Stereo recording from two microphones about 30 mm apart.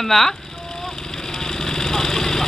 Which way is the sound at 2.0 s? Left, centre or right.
Left.